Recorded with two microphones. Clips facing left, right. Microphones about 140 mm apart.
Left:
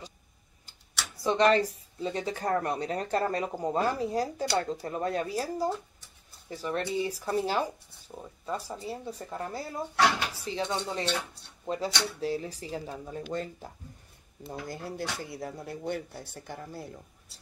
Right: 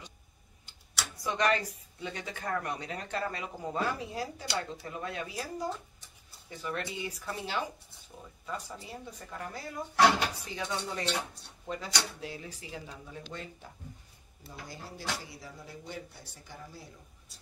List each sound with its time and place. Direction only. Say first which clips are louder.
0.7 s speech: even; 30° left (ahead or behind)
14.5 s speech: left 8 dB; 55° left (ahead or behind)